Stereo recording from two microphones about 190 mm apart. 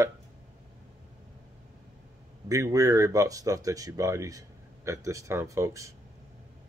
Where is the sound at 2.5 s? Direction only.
15° right (ahead or behind).